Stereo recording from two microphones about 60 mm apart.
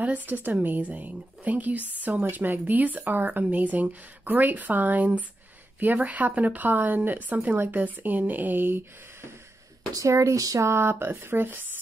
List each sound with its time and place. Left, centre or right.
0.0 s speech: right
9.9 s speech: right
10.7 s speech: right